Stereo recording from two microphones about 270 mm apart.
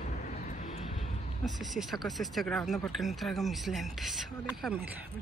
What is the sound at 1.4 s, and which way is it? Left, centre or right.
A man's voice, centre.